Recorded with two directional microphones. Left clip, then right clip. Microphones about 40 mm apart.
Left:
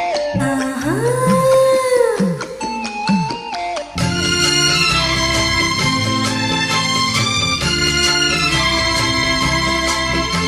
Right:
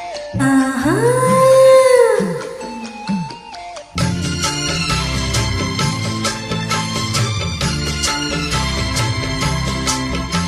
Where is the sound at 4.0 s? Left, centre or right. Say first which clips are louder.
Left 4 dB; left.